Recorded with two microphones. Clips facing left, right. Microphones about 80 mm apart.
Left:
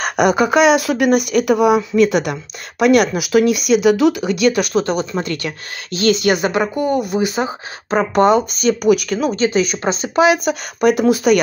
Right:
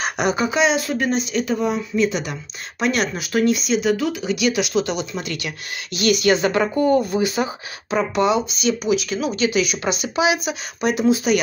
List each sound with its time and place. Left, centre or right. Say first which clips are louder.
0.0 s speech: left 6 dB; left
7.9 s speech: left 5 dB; left
8.8 s speech: left 6 dB; left
9.3 s speech: left 2 dB; left